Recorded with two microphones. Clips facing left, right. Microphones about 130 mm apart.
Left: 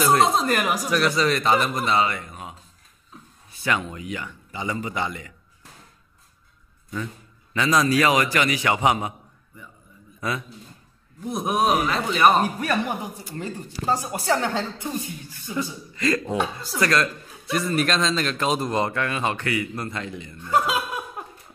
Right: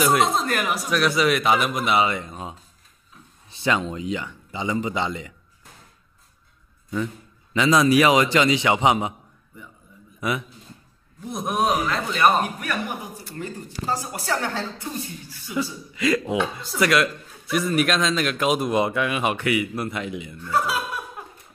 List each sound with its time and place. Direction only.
0.0 s speech: centre (ahead or behind)
2.0 s a man's voice: 20° right (ahead or behind)
7.5 s a man's voice: 20° right (ahead or behind)
11.2 s a man's voice: 5° left (ahead or behind)
12.5 s a woman's voice: 30° left (ahead or behind)
15.9 s a man's voice: 10° right (ahead or behind)
20.4 s chuckle: 20° left (ahead or behind)